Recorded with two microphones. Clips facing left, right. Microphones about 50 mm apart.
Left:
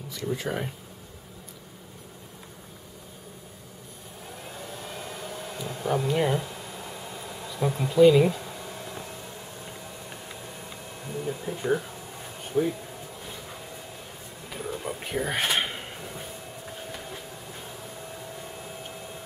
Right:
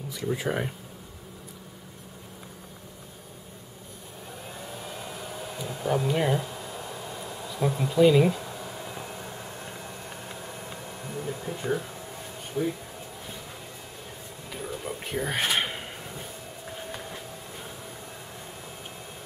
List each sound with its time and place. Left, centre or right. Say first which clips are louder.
0.1 s speech: right 1 dB; centre
4.5 s hair dryer: even; centre
11.2 s speech: left 3 dB; centre
12.6 s speech: left 3 dB; left
14.5 s a sound: left 1 dB; centre